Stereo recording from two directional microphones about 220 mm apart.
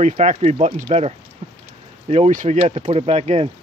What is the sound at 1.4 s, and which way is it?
Rain, 30° right (ahead or behind).